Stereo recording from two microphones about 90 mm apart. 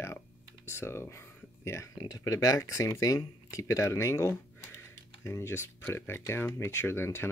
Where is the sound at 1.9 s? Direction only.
50° left (ahead or behind).